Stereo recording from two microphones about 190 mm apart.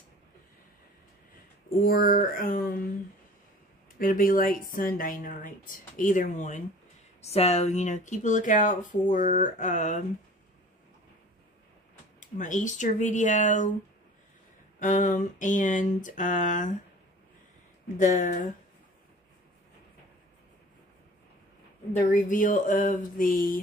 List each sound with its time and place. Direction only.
1.8 s a woman's voice: 50° left (ahead or behind)
4.0 s a woman's voice: 45° left (ahead or behind)
12.2 s speech: 40° left (ahead or behind)
14.8 s speech: 40° left (ahead or behind)
17.9 s speech: 40° left (ahead or behind)
22.1 s a woman's voice: 45° left (ahead or behind)